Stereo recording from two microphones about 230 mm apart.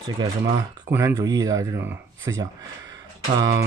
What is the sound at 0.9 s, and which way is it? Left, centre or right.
Speech, centre.